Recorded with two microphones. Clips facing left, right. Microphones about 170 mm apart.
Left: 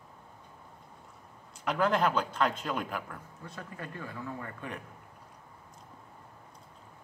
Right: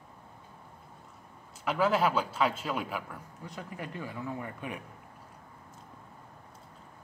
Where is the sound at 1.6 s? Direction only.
5° right (ahead or behind).